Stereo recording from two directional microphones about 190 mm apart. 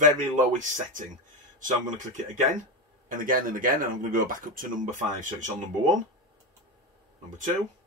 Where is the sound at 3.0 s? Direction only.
45° right (ahead or behind).